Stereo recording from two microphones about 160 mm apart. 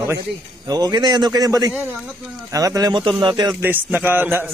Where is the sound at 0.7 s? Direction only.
25° right (ahead or behind).